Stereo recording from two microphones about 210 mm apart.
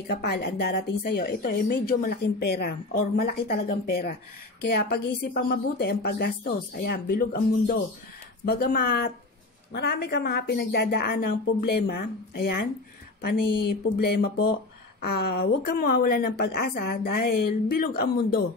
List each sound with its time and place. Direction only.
0.0 s a woman's voice: 45° left (ahead or behind)